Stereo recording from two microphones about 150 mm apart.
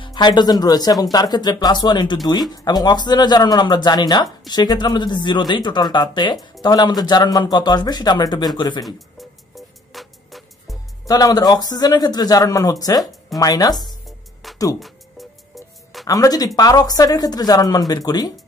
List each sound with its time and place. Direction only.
0.0 s speech: 30° left (ahead or behind)
9.9 s music: centre (ahead or behind)
11.1 s speech: 25° left (ahead or behind)
14.0 s music: centre (ahead or behind)
16.1 s speech: 25° left (ahead or behind)